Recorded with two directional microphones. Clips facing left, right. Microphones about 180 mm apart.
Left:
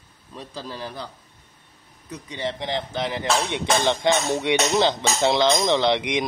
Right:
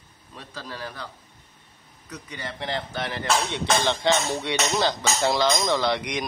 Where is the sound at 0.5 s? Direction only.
30° left (ahead or behind).